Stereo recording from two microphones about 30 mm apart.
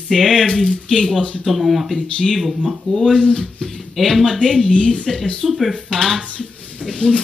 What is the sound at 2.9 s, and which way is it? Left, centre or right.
Speech, centre.